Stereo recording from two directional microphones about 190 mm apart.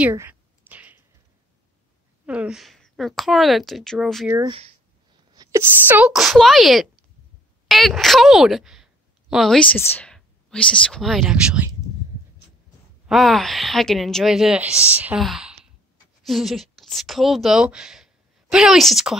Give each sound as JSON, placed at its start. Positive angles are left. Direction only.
{"t": 0.0, "sound": "a sound", "side_deg": -10}
{"t": 2.2, "sound": "a woman's voice", "side_deg": -5}
{"t": 4.3, "sound": "a woman's voice", "side_deg": -20}
{"t": 13.0, "sound": "a woman's voice", "side_deg": 0}